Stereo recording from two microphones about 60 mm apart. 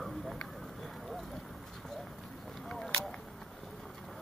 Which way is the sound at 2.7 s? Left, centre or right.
Centre.